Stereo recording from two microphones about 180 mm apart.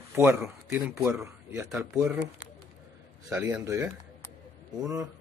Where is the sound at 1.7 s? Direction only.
5° right (ahead or behind).